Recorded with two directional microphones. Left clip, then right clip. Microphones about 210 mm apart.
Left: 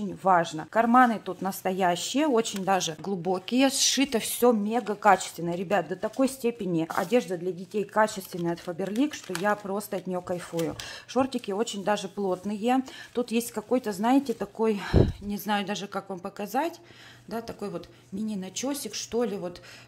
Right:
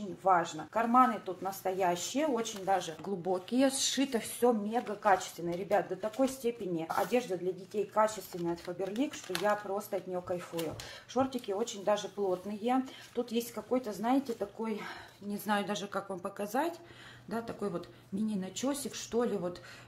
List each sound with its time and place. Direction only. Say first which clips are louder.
0.2 s speech: left 5 dB; 50° left (ahead or behind)
3.1 s speech: left 3 dB; 30° left (ahead or behind)
4.4 s speech: left 6 dB; 45° left (ahead or behind)
15.2 s speech: left 4 dB; 25° left (ahead or behind)